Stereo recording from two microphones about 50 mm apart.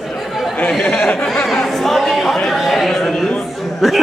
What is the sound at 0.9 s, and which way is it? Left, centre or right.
Speech, centre.